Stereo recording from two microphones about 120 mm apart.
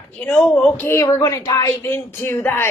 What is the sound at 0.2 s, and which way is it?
Speech, 10° left (ahead or behind).